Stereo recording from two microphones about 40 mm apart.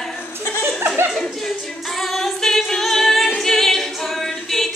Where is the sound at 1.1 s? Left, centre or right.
Centre.